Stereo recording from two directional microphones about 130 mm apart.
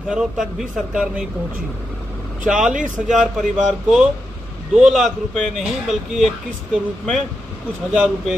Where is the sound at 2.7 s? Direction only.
75° right (ahead or behind).